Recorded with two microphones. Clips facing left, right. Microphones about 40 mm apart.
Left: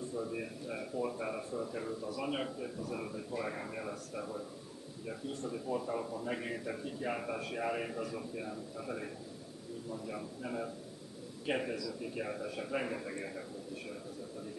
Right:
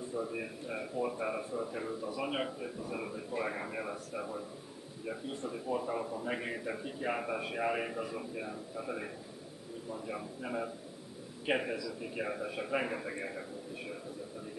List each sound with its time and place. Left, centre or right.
0.1 s a man's voice: centre